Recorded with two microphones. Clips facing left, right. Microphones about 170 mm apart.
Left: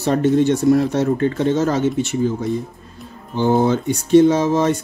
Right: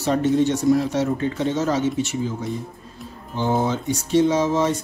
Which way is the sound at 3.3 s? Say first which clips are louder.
Left 6 dB; 60° left (ahead or behind).